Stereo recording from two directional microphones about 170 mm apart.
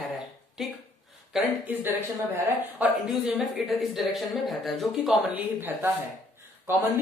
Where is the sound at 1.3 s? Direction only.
Centre (ahead or behind).